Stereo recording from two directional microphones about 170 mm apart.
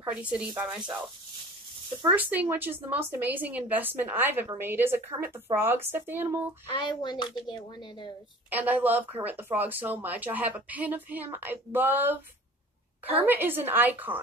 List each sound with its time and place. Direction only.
0.2 s speech: 5° right (ahead or behind)
6.7 s a woman's voice: 25° left (ahead or behind)
8.5 s speech: 10° right (ahead or behind)
13.2 s speech: 10° right (ahead or behind)